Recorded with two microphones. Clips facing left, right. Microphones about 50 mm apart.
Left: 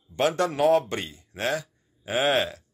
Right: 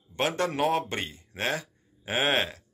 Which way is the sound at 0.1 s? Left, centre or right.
Right.